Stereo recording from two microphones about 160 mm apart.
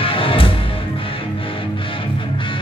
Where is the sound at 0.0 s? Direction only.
35° left (ahead or behind).